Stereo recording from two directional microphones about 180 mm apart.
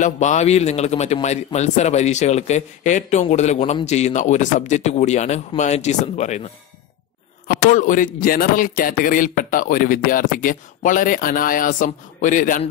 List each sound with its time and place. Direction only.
0.0 s a man's voice: 40° left (ahead or behind)
7.4 s speech: 45° left (ahead or behind)